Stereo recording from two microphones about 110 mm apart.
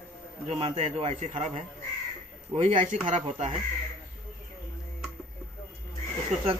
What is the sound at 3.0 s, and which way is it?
Speech, 80° right.